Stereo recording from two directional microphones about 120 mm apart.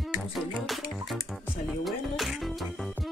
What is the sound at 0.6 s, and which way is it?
Speech, centre (ahead or behind).